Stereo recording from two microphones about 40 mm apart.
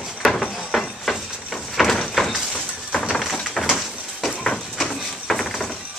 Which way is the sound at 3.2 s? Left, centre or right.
Centre.